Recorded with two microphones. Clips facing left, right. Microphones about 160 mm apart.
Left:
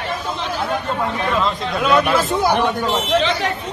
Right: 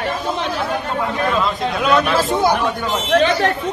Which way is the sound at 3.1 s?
55° right (ahead or behind).